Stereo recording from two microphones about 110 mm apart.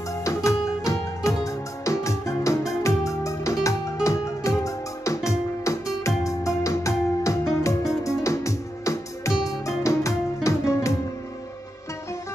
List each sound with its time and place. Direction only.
0.1 s music: 30° left (ahead or behind)